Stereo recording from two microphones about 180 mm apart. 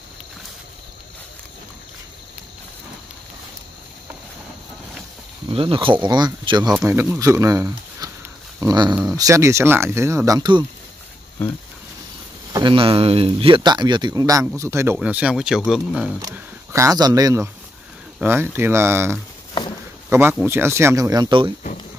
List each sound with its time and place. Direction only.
5.5 s speech: 30° right (ahead or behind)
6.7 s speech: 10° right (ahead or behind)
12.5 s speech: 30° right (ahead or behind); by 16.1 s centre (ahead or behind)
16.7 s speech: 20° right (ahead or behind)